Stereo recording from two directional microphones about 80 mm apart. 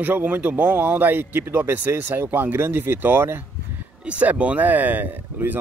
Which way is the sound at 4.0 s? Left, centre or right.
Centre.